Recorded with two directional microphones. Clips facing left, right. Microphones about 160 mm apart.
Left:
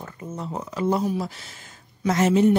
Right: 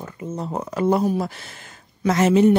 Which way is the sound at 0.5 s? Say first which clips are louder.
Right 4 dB; 55° right (ahead or behind).